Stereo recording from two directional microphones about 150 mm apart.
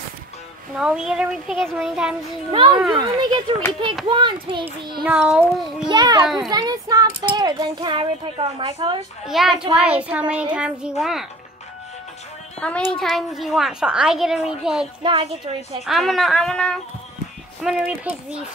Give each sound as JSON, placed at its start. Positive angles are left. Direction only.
{"t": 0.7, "sound": "a woman's voice", "side_deg": -5}
{"t": 2.5, "sound": "a child's voice", "side_deg": -35}
{"t": 5.0, "sound": "a woman's voice", "side_deg": -5}
{"t": 5.9, "sound": "speech", "side_deg": -25}
{"t": 6.2, "sound": "a woman's voice", "side_deg": 0}
{"t": 6.5, "sound": "speech", "side_deg": -25}
{"t": 9.2, "sound": "a woman's voice", "side_deg": 0}
{"t": 12.5, "sound": "a woman's voice", "side_deg": 5}